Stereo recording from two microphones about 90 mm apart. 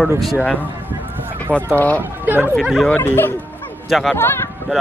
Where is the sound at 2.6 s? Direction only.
5° right (ahead or behind).